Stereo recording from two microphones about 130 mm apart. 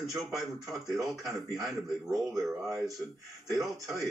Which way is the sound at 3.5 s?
25° right (ahead or behind).